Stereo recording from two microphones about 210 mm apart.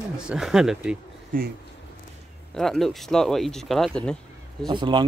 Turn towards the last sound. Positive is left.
turn(degrees=-20)  # may be behind; listen again after turning